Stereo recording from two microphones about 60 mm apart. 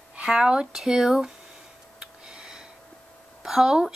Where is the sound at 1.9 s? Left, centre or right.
Centre.